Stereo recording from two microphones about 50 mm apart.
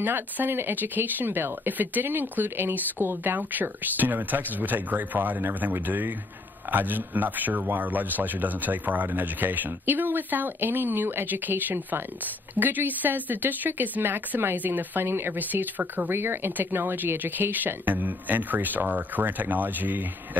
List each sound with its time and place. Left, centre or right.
0.0 s speech: right
15.3 s speech: right
16.1 s speech: right